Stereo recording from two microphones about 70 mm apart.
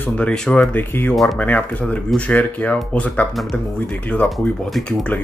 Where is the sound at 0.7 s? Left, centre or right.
Left.